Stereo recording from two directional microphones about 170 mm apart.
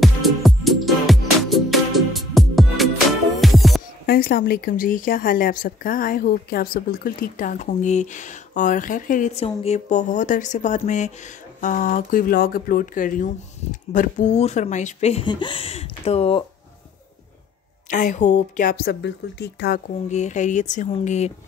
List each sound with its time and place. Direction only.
0.0 s music: centre (ahead or behind)
4.0 s speech: 65° left (ahead or behind); by 15.2 s 40° left (ahead or behind)
15.2 s speech: 30° left (ahead or behind)
17.8 s a woman's voice: 45° left (ahead or behind); by 19.8 s 75° left (ahead or behind)
20.1 s speech: 45° left (ahead or behind)